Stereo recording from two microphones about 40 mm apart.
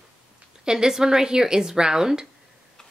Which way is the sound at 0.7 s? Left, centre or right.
Centre.